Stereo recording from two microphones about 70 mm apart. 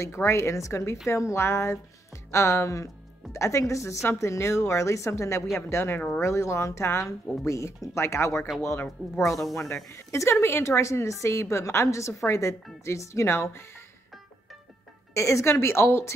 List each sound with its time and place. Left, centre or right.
0.0 s a woman's voice: left
8.8 s speech: centre
9.8 s a woman's voice: left
15.1 s a woman's voice: left